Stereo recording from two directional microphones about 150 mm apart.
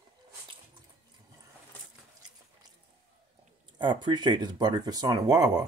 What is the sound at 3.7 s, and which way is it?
Speech, 30° right (ahead or behind).